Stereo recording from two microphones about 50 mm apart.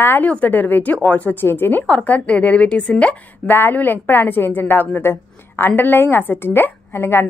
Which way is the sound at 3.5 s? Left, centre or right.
Left.